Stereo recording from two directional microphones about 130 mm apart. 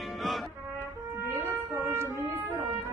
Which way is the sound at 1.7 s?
20° right (ahead or behind).